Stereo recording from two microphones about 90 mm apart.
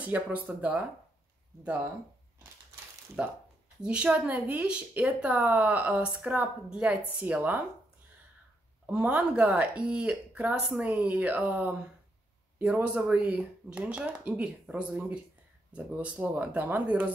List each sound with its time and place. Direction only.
0.0 s speech: 20° right (ahead or behind)
3.2 s speech: 10° right (ahead or behind)
8.8 s speech: 15° right (ahead or behind)
12.8 s speech: 15° right (ahead or behind)